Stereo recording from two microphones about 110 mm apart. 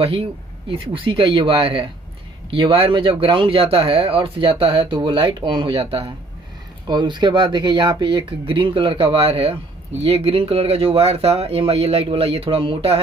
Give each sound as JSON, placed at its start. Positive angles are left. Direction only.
{"t": 0.0, "sound": "speech", "side_deg": -65}
{"t": 6.9, "sound": "speech", "side_deg": -45}